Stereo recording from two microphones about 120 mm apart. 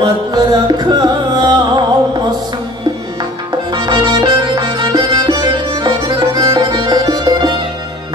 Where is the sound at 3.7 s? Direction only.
45° right (ahead or behind).